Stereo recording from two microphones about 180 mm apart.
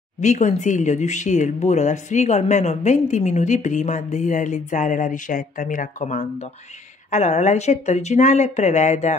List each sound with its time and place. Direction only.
0.2 s speech: 40° left (ahead or behind)